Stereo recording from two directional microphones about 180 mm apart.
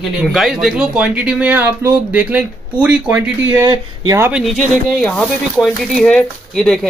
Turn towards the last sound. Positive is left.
turn(degrees=5)  # may be behind; listen again after turning